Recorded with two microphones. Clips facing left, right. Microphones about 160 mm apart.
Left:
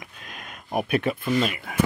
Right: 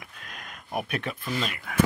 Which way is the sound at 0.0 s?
Centre (ahead or behind).